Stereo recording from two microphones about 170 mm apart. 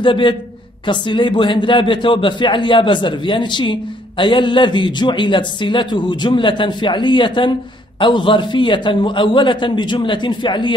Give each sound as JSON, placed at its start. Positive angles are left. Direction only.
{"t": 0.0, "sound": "a man's voice", "side_deg": 30}